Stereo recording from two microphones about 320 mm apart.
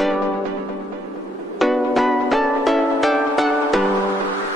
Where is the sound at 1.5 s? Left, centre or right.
Centre.